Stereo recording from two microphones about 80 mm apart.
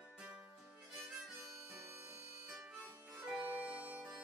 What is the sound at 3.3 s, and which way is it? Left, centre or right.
Music, centre.